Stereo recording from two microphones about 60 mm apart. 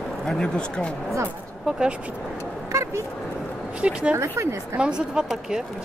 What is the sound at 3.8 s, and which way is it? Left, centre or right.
Speech, right.